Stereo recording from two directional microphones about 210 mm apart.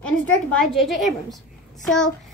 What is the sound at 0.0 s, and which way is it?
A woman's voice, 5° left (ahead or behind).